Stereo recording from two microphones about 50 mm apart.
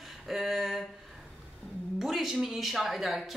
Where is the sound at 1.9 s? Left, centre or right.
Centre.